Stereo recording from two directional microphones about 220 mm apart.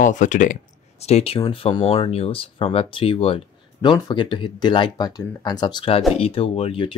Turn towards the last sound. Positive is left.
turn(degrees=25)  # may be behind; listen again after turning